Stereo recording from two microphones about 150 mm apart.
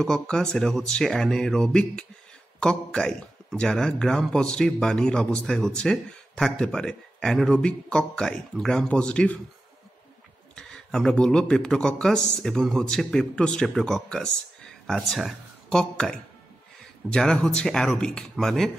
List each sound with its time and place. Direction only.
0.0 s a man's voice: 5° left (ahead or behind)
10.5 s a man's voice: 5° left (ahead or behind)